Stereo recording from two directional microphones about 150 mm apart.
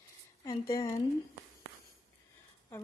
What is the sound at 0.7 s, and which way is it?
Speech, 25° left (ahead or behind).